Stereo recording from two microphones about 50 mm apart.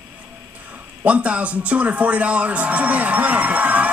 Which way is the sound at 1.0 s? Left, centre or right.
Right.